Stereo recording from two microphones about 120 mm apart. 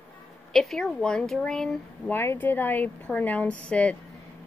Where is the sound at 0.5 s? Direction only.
Centre (ahead or behind).